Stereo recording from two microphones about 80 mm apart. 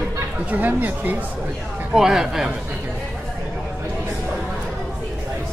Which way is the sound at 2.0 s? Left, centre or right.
Centre.